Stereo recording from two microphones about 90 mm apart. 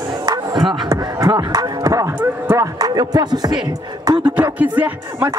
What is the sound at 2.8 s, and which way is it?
Speech, 45° right (ahead or behind).